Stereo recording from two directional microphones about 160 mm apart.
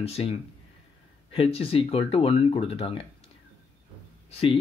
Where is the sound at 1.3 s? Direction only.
35° left (ahead or behind).